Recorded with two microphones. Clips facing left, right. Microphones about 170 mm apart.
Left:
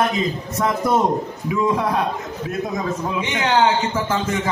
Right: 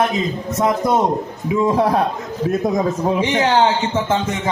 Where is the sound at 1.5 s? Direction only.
35° right (ahead or behind).